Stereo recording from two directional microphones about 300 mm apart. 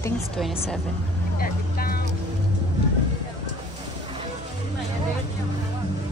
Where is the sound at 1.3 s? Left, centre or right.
Left.